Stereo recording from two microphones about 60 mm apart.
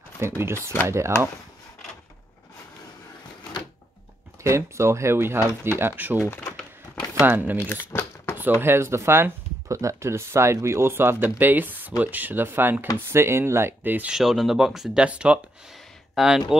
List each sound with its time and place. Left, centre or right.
0.2 s speech: right
4.4 s speech: right
6.2 s speech: left
7.2 s speech: right
7.9 s a sound: left
8.4 s speech: right
9.7 s speech: right
14.0 s speech: centre
15.0 s speech: right
15.7 s a sound: centre